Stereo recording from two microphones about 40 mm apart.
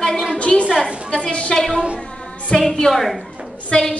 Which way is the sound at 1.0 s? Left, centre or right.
Left.